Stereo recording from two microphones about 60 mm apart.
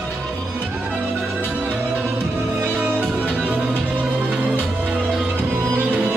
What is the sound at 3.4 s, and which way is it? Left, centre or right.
Music, right.